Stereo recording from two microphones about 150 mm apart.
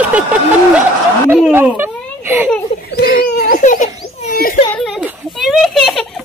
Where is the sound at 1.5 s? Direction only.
15° right (ahead or behind).